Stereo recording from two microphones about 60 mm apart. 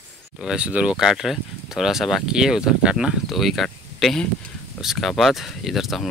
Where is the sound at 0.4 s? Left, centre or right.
Centre.